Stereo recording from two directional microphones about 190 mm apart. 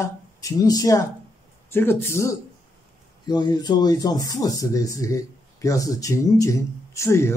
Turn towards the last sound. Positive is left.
turn(degrees=15)  # may be behind; listen again after turning